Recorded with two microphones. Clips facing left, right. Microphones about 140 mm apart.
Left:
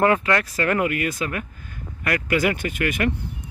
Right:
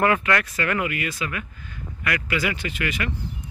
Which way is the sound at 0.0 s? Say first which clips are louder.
Left 2 dB; 30° left (ahead or behind).